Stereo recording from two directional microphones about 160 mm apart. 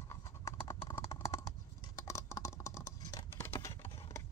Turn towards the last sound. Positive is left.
turn(degrees=15)  # may be behind; listen again after turning